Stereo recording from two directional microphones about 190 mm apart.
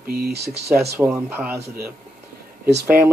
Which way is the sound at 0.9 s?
10° right (ahead or behind).